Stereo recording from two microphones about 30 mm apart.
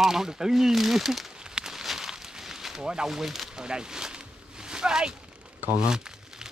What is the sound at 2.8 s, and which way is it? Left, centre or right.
Speech, right.